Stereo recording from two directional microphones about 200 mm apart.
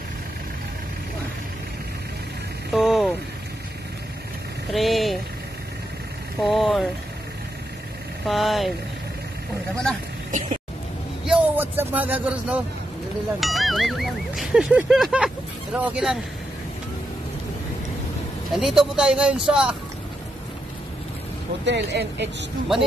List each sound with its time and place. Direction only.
2.7 s vehicle: centre (ahead or behind)
4.7 s a sound: centre (ahead or behind)
6.4 s vehicle: centre (ahead or behind)
8.3 s speech: centre (ahead or behind)
11.2 s a sound: 10° right (ahead or behind)
13.4 s speech: centre (ahead or behind)
18.5 s speech: centre (ahead or behind)
21.6 s speech: 60° right (ahead or behind)